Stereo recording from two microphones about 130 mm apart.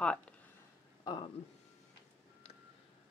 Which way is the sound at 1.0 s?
35° left (ahead or behind).